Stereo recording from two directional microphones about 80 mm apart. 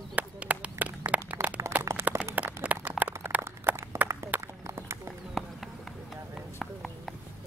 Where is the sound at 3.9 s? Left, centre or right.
Right.